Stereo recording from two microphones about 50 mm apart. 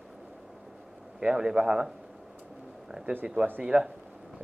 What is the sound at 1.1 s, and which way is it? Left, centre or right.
Speech, centre.